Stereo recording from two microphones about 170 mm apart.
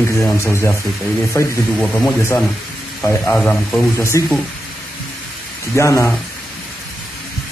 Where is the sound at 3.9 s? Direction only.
15° left (ahead or behind).